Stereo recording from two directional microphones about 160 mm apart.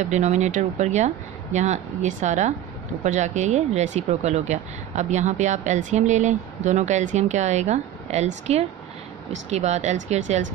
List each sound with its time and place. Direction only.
0.0 s speech: 45° right (ahead or behind)